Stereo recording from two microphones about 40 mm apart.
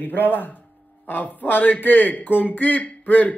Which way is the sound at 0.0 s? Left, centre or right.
Left.